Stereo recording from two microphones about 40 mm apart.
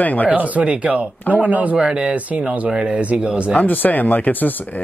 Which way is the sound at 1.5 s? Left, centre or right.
Right.